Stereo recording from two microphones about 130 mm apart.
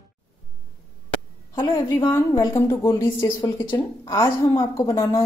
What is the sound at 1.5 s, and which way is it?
Speech, 35° left (ahead or behind).